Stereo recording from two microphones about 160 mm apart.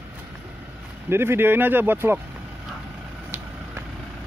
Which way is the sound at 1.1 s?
15° right (ahead or behind).